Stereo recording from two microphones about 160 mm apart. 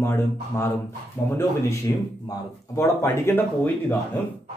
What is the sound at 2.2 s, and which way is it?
Speech, 20° left (ahead or behind).